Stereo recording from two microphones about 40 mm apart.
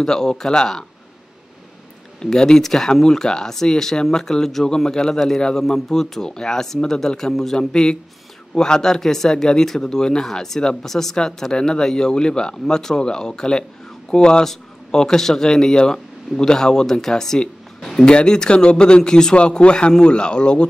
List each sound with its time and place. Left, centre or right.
0.0 s speech: centre
2.2 s speech: centre
18.0 s speech: left